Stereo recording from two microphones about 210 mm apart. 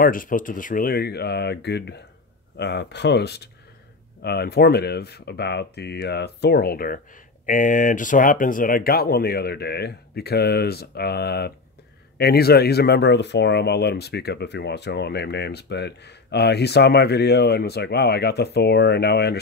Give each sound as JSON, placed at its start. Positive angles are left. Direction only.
{"t": 0.0, "sound": "speech", "side_deg": 40}